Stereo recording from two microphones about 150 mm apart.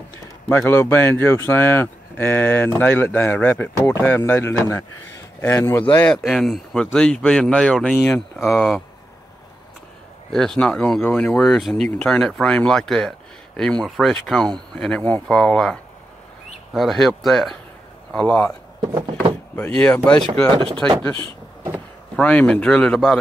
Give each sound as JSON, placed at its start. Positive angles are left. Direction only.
{"t": 0.5, "sound": "speech", "side_deg": 15}
{"t": 10.3, "sound": "speech", "side_deg": 5}
{"t": 19.5, "sound": "speech", "side_deg": 10}
{"t": 20.5, "sound": "speech", "side_deg": -35}
{"t": 22.1, "sound": "speech", "side_deg": 10}